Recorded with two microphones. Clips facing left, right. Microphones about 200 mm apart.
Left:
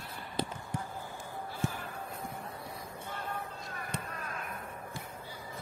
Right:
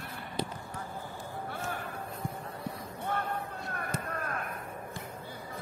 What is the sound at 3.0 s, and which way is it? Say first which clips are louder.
Basketball bounce: right 6 dB; 65° right (ahead or behind).